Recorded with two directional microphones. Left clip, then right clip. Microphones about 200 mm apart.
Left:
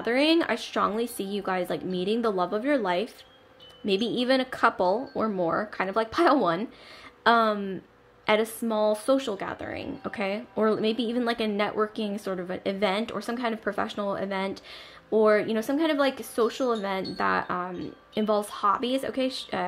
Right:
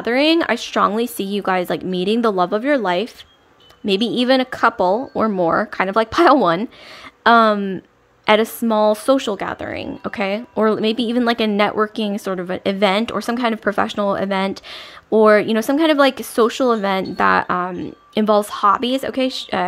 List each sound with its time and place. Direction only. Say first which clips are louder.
0.0 s speech: right 7 dB; 30° right (ahead or behind)